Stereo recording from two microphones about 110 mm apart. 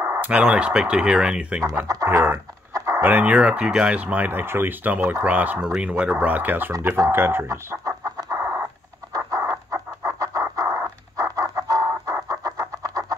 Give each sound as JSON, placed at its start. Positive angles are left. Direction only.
{"t": 0.0, "sound": "a sound", "side_deg": -25}
{"t": 0.3, "sound": "speech", "side_deg": -10}
{"t": 1.6, "sound": "speech", "side_deg": -30}
{"t": 2.0, "sound": "speech", "side_deg": -20}
{"t": 2.7, "sound": "a sound", "side_deg": -30}
{"t": 3.0, "sound": "speech", "side_deg": -15}
{"t": 9.1, "sound": "bird", "side_deg": -30}